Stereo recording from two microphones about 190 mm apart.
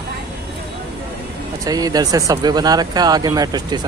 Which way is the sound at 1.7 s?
20° right (ahead or behind).